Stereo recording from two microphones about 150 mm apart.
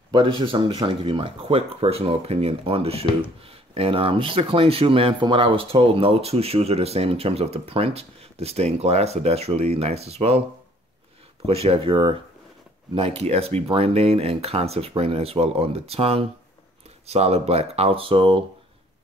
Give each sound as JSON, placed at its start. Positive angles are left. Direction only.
{"t": 0.1, "sound": "speech", "side_deg": -35}
{"t": 11.4, "sound": "speech", "side_deg": -40}